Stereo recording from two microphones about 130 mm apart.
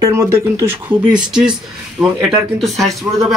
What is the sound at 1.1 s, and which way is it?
Speech, 5° right (ahead or behind).